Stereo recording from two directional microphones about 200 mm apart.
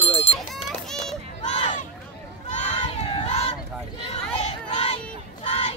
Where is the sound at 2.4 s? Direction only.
35° left (ahead or behind).